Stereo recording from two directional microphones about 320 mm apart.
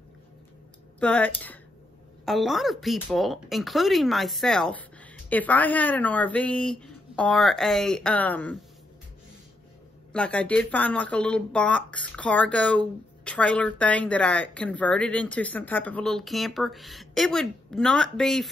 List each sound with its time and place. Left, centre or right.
0.9 s speech: centre
10.1 s speech: centre